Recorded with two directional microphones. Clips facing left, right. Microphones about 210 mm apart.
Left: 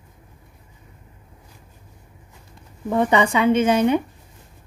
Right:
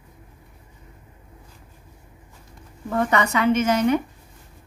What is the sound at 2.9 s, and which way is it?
A woman's voice, 20° left (ahead or behind).